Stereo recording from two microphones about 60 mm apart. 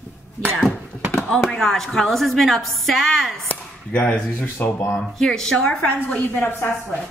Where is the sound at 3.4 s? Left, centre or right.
Left.